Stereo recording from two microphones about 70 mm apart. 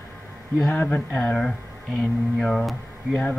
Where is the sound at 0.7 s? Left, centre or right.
Left.